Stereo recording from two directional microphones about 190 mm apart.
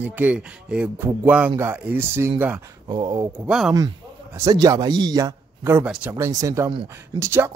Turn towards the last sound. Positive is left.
turn(degrees=-20)  # may be behind; listen again after turning